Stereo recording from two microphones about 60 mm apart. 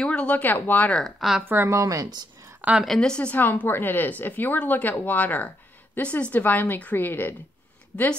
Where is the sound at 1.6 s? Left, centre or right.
Right.